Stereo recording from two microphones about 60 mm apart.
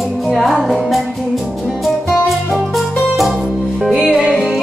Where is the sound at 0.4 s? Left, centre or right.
Centre.